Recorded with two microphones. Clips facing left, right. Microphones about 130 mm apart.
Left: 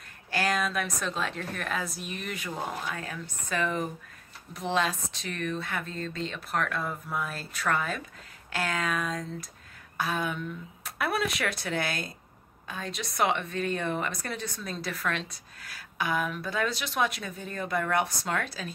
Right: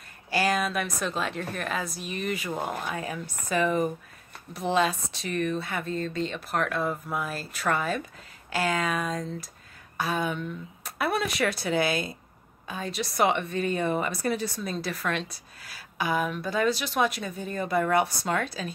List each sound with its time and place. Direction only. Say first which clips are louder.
0.3 s a woman's voice: right 3 dB; 5° right (ahead or behind)
2.5 s speech: right 3 dB; 55° right (ahead or behind)
2.9 s a woman's voice: right 4 dB; 15° right (ahead or behind)